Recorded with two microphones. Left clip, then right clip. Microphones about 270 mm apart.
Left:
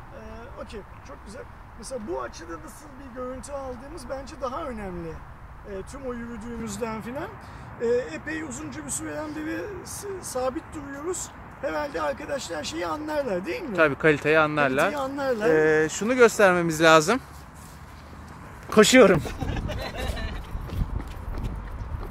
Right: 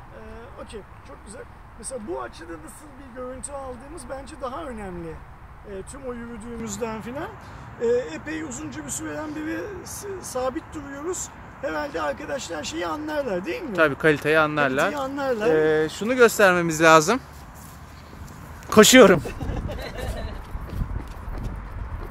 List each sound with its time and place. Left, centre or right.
1.9 s speech: centre
15.5 s speech: centre
18.7 s speech: centre